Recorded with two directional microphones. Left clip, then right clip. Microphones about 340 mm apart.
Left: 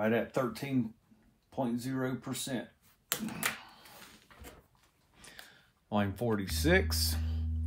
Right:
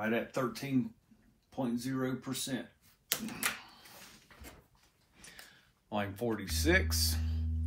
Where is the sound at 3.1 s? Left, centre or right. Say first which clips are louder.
Right 1 dB; centre.